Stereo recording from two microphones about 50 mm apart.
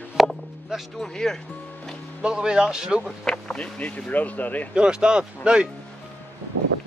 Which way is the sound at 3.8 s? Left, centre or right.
Left.